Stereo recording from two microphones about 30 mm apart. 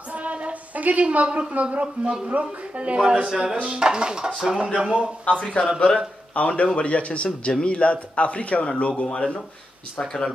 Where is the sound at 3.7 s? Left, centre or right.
Right.